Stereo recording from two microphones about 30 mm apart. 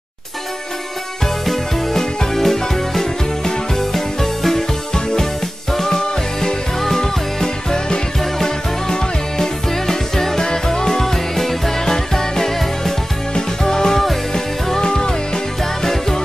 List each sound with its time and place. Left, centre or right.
1.2 s music: centre